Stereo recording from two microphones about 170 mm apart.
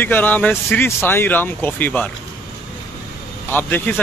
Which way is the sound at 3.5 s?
10° left (ahead or behind).